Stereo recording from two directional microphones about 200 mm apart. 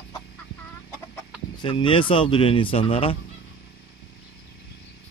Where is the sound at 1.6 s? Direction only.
25° left (ahead or behind).